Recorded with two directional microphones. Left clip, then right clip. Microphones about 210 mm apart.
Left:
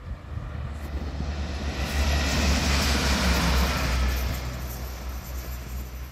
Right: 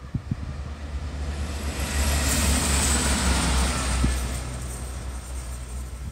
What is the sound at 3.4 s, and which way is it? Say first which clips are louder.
Music: even; 20° left (ahead or behind).